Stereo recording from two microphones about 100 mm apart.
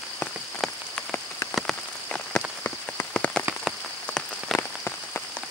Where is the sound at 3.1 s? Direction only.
10° left (ahead or behind).